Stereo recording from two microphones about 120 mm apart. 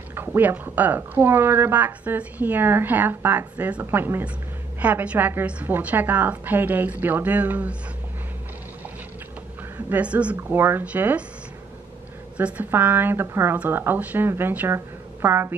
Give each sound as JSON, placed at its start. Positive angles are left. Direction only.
{"t": 0.1, "sound": "a woman's voice", "side_deg": -15}
{"t": 9.8, "sound": "a woman's voice", "side_deg": -10}
{"t": 12.4, "sound": "a woman's voice", "side_deg": -15}